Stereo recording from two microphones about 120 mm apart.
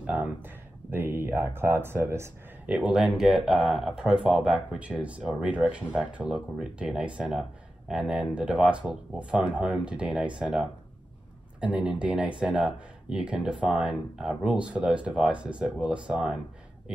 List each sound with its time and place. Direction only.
0.0 s speech: 10° right (ahead or behind)
2.6 s speech: 10° right (ahead or behind)